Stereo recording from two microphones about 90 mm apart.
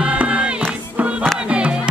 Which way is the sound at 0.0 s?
15° right (ahead or behind).